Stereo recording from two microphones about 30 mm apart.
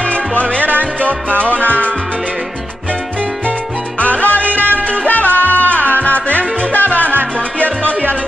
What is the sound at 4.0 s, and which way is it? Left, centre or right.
Salsa music, left.